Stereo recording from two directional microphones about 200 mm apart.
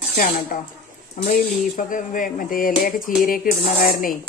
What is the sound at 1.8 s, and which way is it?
Speech, 40° left (ahead or behind).